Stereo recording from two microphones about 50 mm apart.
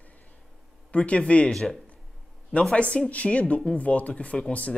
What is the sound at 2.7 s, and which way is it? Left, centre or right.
Speech, left.